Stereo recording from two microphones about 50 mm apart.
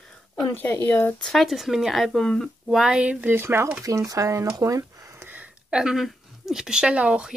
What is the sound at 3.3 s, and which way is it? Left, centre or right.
Speech, right.